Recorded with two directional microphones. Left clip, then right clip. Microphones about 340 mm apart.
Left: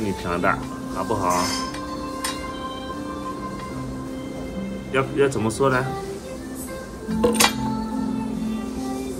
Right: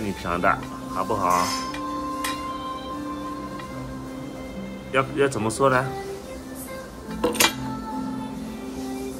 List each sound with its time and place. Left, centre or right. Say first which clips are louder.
0.3 s speech: right 1 dB; centre
4.9 s speech: left 1 dB; centre
7.2 s music: left 3 dB; centre